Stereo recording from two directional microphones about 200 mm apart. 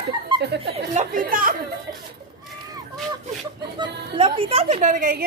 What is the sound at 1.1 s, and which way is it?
Speech, 45° right (ahead or behind).